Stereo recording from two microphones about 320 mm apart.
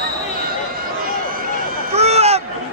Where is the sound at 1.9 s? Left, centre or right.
Centre.